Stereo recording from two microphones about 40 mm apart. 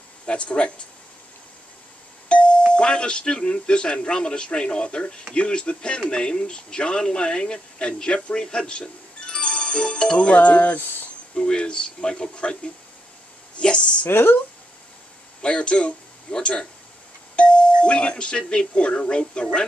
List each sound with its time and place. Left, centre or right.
0.3 s speech: left
2.2 s doorbell: left
2.7 s speech: left
11.3 s speech: left
15.4 s speech: left
17.4 s doorbell: left
17.8 s speech: left